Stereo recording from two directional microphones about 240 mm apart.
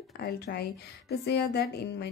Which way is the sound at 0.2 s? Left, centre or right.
Left.